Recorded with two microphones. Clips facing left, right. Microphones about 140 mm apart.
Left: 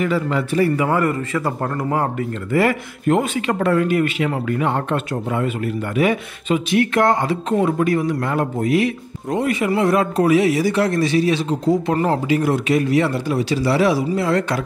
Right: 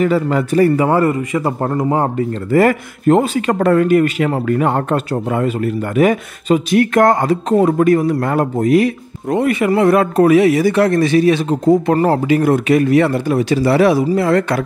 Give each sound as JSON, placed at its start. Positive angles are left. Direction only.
{"t": 0.0, "sound": "a man's voice", "side_deg": -40}
{"t": 0.8, "sound": "a man's voice", "side_deg": -25}
{"t": 2.5, "sound": "speech", "side_deg": -45}
{"t": 9.3, "sound": "a man's voice", "side_deg": -60}